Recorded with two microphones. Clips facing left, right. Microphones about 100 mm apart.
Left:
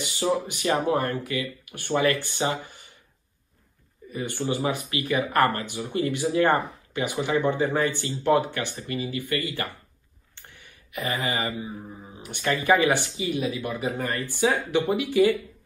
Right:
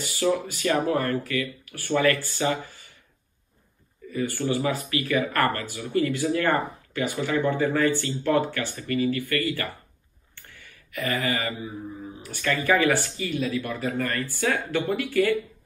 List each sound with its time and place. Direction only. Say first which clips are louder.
0.0 s speech: right 1 dB; 20° left (ahead or behind)
4.1 s speech: right 2 dB; 20° left (ahead or behind)
10.3 s a sound: right 1 dB; 20° left (ahead or behind)
12.3 s speech: left 2 dB; 20° left (ahead or behind)